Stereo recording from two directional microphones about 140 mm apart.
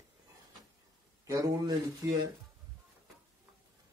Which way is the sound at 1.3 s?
25° right (ahead or behind).